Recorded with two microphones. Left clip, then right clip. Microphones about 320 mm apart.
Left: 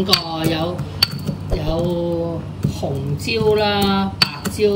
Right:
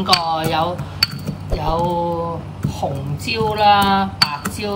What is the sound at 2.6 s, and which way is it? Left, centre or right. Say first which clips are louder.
Speech: right 2 dB; centre.